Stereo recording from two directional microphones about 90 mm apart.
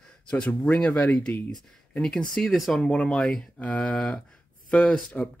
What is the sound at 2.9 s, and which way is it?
Speech, 10° left (ahead or behind).